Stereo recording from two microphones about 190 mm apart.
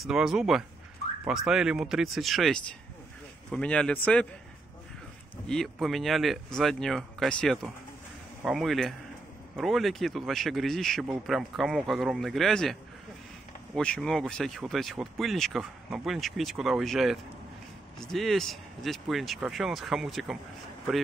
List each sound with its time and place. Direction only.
0.0 s speech: 5° right (ahead or behind)
5.5 s speech: centre (ahead or behind)
13.7 s speech: 5° left (ahead or behind)